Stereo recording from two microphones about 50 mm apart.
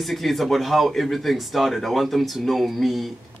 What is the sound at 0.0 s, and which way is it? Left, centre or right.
Speech, centre.